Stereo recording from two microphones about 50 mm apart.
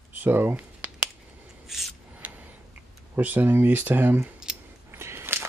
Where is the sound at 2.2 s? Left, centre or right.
Right.